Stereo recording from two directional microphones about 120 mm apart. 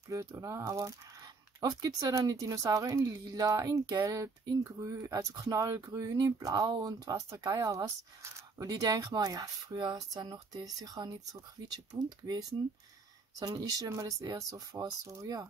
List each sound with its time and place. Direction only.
0.1 s speech: 25° right (ahead or behind)